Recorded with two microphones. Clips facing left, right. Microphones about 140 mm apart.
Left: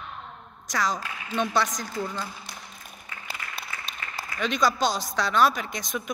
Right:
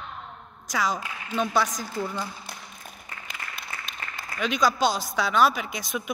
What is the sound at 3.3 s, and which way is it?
Applause, 35° left (ahead or behind).